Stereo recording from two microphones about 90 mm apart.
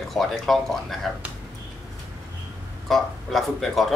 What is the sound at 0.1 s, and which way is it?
Speech, 5° left (ahead or behind).